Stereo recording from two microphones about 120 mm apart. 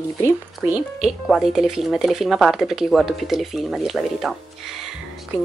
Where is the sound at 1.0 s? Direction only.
Centre (ahead or behind).